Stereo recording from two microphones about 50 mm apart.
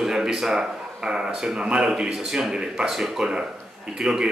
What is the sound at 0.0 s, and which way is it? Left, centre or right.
Speech, centre.